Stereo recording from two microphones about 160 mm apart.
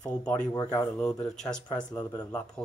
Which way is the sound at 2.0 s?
15° left (ahead or behind).